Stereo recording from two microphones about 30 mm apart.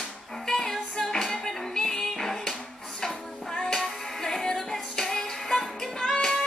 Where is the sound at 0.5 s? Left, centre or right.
Centre.